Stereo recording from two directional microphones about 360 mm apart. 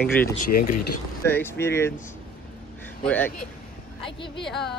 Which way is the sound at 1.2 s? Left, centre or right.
Centre.